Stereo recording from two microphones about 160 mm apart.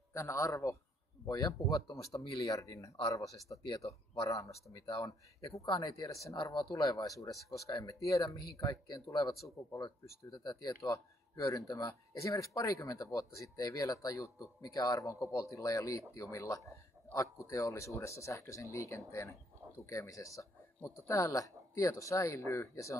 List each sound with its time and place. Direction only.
0.1 s speech: 20° left (ahead or behind)